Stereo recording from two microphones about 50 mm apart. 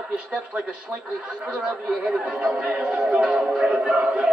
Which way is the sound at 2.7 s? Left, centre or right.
Centre.